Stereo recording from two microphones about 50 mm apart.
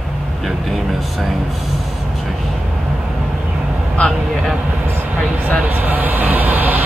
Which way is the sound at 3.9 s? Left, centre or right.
Left.